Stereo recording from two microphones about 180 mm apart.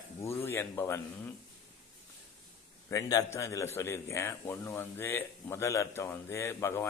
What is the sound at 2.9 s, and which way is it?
A man's voice, 20° left (ahead or behind).